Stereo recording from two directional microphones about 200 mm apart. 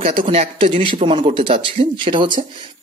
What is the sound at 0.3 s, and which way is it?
Speech, 25° right (ahead or behind).